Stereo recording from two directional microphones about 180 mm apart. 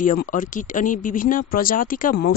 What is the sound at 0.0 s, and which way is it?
Speech, 50° left (ahead or behind).